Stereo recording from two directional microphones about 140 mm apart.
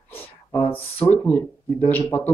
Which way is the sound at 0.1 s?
15° left (ahead or behind).